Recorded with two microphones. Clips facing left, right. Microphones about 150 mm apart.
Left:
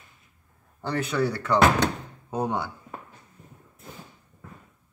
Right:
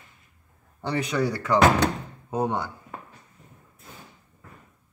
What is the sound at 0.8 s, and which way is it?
A man's voice, 5° right (ahead or behind).